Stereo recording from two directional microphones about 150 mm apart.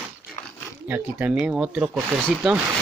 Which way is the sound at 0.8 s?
10° right (ahead or behind).